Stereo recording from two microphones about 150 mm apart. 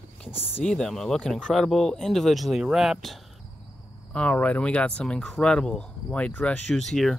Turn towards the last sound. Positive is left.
turn(degrees=0)  # may be behind; listen again after turning